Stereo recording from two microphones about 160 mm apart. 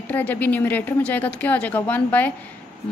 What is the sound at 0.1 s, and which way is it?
A woman's voice, 10° left (ahead or behind).